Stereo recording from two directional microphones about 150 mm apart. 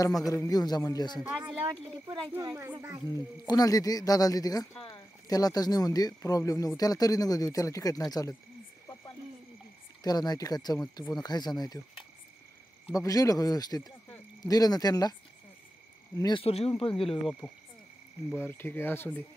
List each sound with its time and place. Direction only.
0.3 s speech: 25° left (ahead or behind)
1.7 s speech: 35° right (ahead or behind)
2.3 s speech: 20° right (ahead or behind)
3.2 s speech: 25° left (ahead or behind)
10.0 s speech: 25° left (ahead or behind)
12.9 s speech: 25° left (ahead or behind)
16.2 s speech: 25° left (ahead or behind)
16.4 s a man's voice: 40° left (ahead or behind)
18.3 s speech: 15° left (ahead or behind)